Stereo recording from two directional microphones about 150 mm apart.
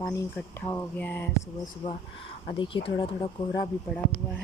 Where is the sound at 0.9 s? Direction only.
10° left (ahead or behind).